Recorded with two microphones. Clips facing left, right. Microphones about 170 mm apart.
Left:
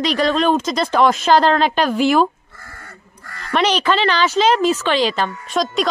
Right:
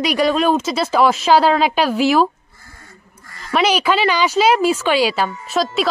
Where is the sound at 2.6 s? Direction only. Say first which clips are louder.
Left 5 dB; 70° left (ahead or behind).